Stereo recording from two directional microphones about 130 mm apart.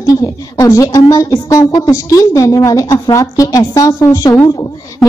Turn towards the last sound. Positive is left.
turn(degrees=25)  # may be behind; listen again after turning